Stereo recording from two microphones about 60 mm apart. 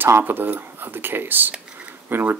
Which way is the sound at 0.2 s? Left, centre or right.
Right.